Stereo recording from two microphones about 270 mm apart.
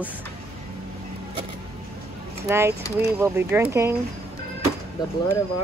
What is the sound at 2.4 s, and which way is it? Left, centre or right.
Speech, centre.